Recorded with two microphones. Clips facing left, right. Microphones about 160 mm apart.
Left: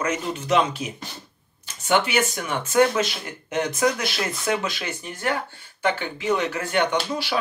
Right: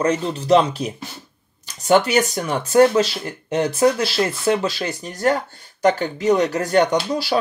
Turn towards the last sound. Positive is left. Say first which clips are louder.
# right 5 dB
turn(degrees=-35)  # may be behind; listen again after turning